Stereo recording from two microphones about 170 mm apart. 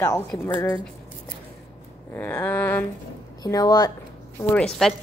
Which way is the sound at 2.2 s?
10° left (ahead or behind).